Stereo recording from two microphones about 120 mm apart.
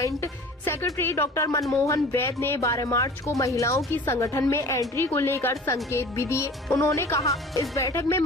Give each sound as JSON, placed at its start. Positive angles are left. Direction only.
{"t": 0.0, "sound": "a woman's voice", "side_deg": 20}